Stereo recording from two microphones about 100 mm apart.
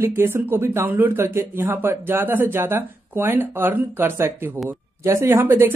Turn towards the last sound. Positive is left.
turn(degrees=-20)  # may be behind; listen again after turning